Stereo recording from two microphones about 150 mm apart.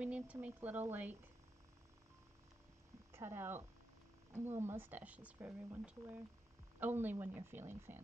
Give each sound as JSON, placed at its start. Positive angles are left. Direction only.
{"t": 0.0, "sound": "speech", "side_deg": -10}
{"t": 3.1, "sound": "speech", "side_deg": -15}